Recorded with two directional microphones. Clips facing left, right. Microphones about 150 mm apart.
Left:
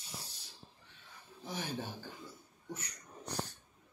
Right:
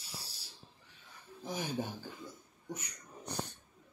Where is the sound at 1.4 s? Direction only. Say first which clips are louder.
Right 3 dB; 15° right (ahead or behind).